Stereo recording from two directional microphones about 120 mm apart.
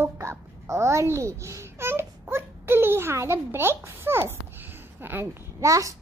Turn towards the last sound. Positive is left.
turn(degrees=-25)  # may be behind; listen again after turning